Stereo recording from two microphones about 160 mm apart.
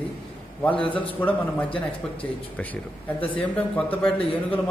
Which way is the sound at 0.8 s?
10° left (ahead or behind).